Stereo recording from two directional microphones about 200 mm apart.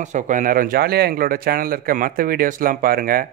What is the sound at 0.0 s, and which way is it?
Speech, 40° right (ahead or behind).